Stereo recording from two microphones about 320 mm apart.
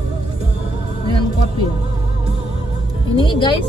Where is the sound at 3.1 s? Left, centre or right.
Centre.